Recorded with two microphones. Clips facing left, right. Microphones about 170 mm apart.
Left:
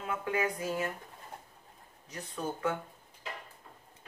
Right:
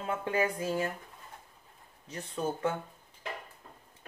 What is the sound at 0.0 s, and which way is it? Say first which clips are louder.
Speech: right 2 dB; 30° right (ahead or behind).